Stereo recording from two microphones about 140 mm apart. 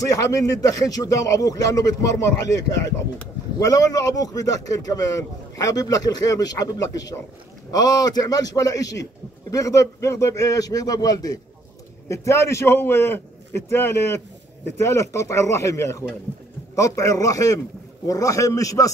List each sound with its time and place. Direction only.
0.0 s a man's voice: 25° left (ahead or behind)